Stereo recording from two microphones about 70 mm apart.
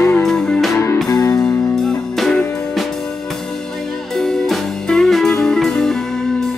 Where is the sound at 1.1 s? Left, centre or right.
Left.